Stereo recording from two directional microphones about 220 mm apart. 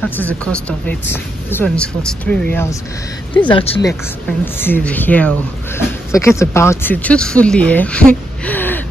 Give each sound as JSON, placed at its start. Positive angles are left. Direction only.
{"t": 0.1, "sound": "speech", "side_deg": 5}
{"t": 3.4, "sound": "speech", "side_deg": 25}
{"t": 4.3, "sound": "speech", "side_deg": 5}